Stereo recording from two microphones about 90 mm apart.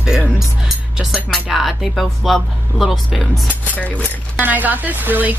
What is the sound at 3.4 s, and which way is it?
Cutlery, 20° left (ahead or behind).